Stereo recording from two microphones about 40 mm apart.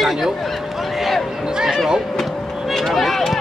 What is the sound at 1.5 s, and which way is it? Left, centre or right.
Speech, centre.